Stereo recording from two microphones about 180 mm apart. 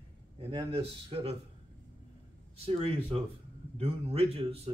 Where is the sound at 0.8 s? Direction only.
35° right (ahead or behind).